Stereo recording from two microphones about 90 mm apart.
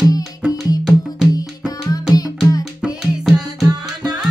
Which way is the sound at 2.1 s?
45° left (ahead or behind).